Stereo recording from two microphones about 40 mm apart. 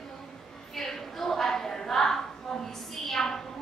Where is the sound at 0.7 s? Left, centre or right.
Centre.